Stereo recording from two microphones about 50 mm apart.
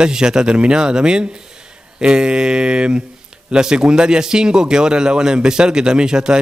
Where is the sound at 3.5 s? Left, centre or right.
Centre.